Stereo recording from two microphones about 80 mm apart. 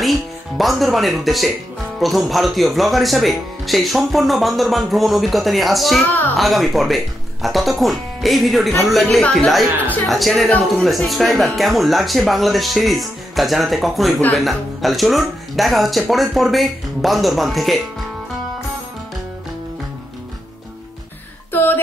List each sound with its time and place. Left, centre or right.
0.0 s speech: centre
21.5 s music: left